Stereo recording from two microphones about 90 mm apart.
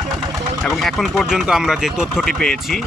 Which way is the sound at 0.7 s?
Centre (ahead or behind).